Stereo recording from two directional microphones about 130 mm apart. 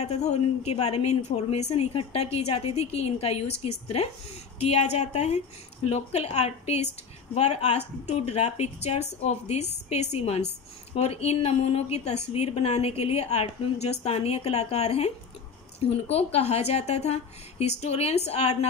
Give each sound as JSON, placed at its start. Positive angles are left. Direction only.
{"t": 0.0, "sound": "a woman's voice", "side_deg": 60}